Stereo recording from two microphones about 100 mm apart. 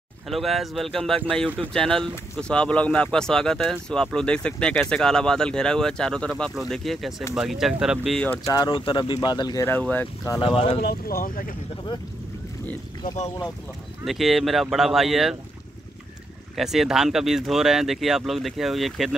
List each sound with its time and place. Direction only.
0.3 s speech: centre (ahead or behind)
8.5 s speech: 55° left (ahead or behind)
9.7 s speech: 15° left (ahead or behind)
10.4 s speech: 65° left (ahead or behind)
11.7 s speech: 45° left (ahead or behind)
14.0 s speech: centre (ahead or behind)
16.5 s speech: 5° right (ahead or behind)